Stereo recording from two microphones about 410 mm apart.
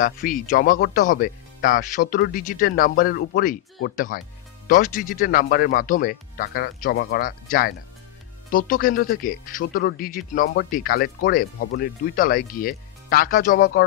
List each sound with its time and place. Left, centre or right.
0.0 s speech: centre